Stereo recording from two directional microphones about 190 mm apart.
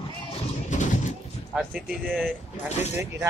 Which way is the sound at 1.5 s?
Centre (ahead or behind).